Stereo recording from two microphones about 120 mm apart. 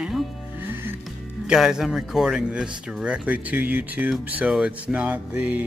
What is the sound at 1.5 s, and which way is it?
Mantra, 5° right (ahead or behind).